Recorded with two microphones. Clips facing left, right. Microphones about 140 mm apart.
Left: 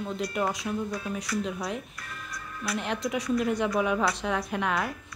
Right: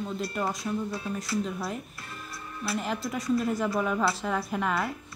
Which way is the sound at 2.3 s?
30° right (ahead or behind).